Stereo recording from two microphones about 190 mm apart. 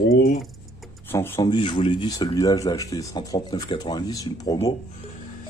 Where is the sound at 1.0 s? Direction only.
15° left (ahead or behind).